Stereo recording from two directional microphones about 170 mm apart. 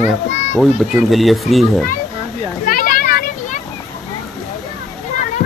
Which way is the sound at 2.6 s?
55° left (ahead or behind).